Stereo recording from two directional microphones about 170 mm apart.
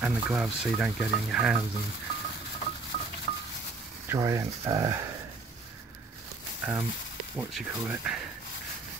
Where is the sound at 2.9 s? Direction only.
40° left (ahead or behind).